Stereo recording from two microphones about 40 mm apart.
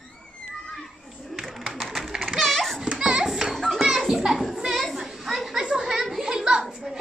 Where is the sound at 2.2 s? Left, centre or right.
Centre.